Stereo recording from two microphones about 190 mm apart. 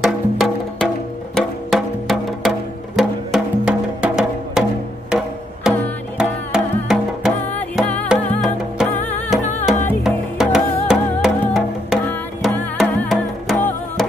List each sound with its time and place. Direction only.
0.0 s music: centre (ahead or behind)
7.5 s music: 5° left (ahead or behind)
10.0 s music: 5° right (ahead or behind)